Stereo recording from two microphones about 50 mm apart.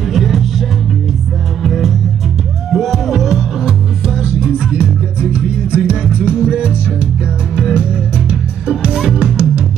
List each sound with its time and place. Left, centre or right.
0.1 s music: centre